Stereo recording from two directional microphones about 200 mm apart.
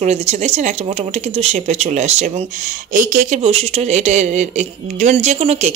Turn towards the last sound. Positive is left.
turn(degrees=-35)  # may be behind; listen again after turning